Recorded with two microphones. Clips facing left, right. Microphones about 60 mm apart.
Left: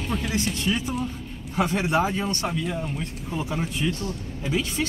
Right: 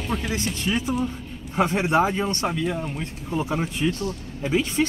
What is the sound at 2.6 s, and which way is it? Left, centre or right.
Speech, centre.